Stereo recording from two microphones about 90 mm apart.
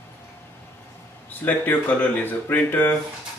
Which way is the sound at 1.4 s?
20° left (ahead or behind).